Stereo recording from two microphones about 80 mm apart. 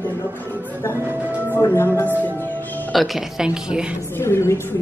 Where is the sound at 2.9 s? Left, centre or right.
Centre.